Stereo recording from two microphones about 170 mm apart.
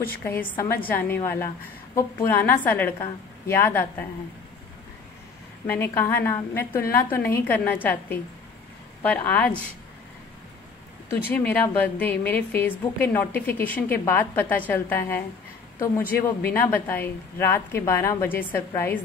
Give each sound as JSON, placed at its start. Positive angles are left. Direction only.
{"t": 0.2, "sound": "a woman's voice", "side_deg": 15}
{"t": 5.7, "sound": "a woman's voice", "side_deg": 15}
{"t": 11.2, "sound": "a woman's voice", "side_deg": 10}